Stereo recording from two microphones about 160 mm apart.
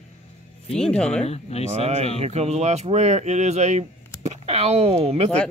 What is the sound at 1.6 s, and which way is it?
Speech, 40° right (ahead or behind).